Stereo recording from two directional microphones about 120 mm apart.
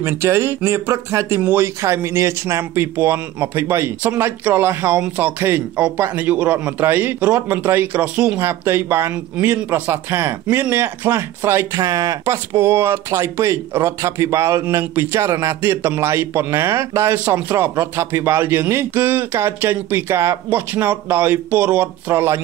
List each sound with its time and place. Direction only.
0.0 s a man's voice: 20° right (ahead or behind)